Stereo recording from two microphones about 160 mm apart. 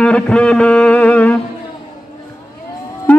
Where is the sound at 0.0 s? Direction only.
5° left (ahead or behind).